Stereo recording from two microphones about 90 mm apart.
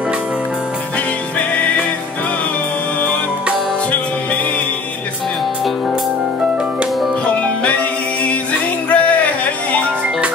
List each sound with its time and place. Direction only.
7.2 s music: 15° left (ahead or behind)
8.9 s music: 15° left (ahead or behind)